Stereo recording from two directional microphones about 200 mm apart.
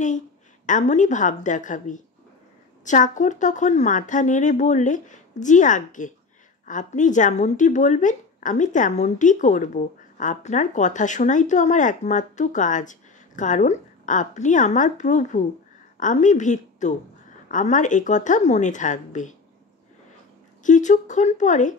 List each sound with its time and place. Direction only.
0.7 s a woman's voice: 40° left (ahead or behind)
20.6 s speech: 40° left (ahead or behind)